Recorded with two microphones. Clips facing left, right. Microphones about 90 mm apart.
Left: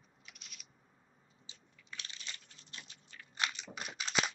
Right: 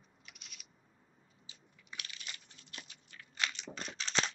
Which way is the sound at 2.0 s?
25° left (ahead or behind).